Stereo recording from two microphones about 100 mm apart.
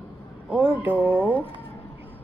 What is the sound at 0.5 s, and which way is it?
Speech, 20° right (ahead or behind).